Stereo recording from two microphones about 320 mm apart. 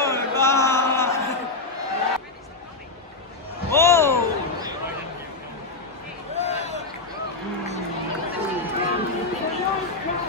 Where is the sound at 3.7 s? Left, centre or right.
Centre.